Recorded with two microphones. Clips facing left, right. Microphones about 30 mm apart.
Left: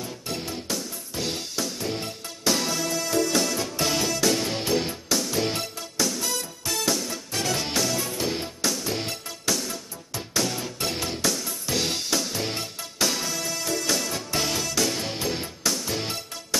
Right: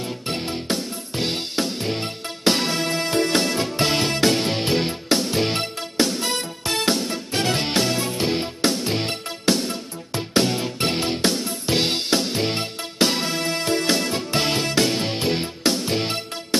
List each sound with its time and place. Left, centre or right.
0.3 s music: right